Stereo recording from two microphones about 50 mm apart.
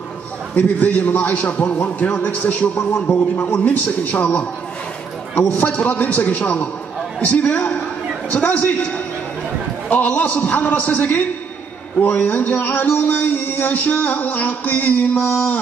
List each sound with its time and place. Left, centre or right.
0.6 s speech: left
5.5 s a man's voice: left